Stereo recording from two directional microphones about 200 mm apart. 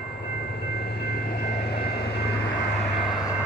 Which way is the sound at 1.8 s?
55° left (ahead or behind).